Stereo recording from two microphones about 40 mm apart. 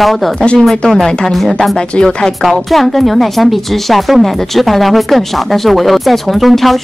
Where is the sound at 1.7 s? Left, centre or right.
Centre.